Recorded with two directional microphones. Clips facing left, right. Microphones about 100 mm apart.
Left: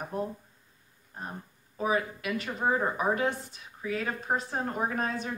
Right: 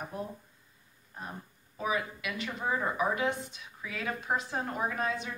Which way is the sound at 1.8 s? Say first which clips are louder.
Left 4 dB; 40° left (ahead or behind).